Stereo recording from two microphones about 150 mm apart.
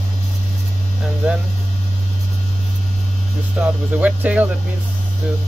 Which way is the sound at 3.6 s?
10° right (ahead or behind).